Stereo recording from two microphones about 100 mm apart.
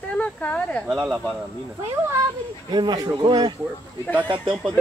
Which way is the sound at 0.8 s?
5° right (ahead or behind).